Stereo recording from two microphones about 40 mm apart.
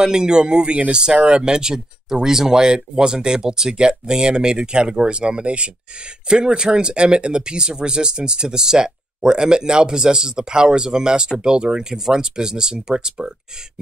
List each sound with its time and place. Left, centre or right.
0.0 s speech: centre